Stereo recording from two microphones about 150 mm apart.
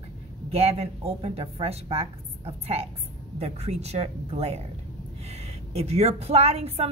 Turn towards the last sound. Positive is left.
turn(degrees=-40)  # may be behind; listen again after turning